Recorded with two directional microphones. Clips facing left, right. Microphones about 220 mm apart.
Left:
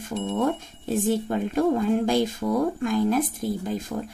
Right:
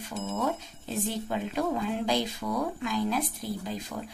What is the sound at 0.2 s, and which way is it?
Speech, 30° left (ahead or behind).